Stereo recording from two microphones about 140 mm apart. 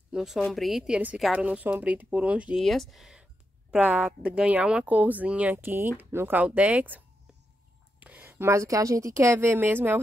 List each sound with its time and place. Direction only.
0.1 s speech: 5° right (ahead or behind)
2.6 s speech: centre (ahead or behind)
8.0 s speech: 10° right (ahead or behind)